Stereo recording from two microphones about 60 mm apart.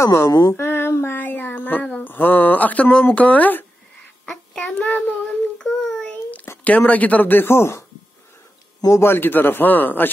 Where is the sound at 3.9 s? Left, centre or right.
Centre.